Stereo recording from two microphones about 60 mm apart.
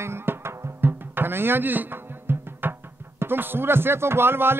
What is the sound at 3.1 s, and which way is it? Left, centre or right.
Speech, right.